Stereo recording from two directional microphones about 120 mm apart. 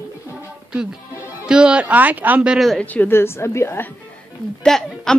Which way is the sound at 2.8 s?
15° left (ahead or behind).